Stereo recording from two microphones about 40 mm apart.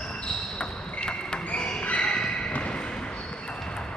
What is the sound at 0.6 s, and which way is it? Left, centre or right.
Basketball bounce, left.